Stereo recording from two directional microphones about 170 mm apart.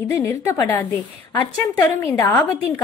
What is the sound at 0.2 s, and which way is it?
A woman's voice, 15° left (ahead or behind).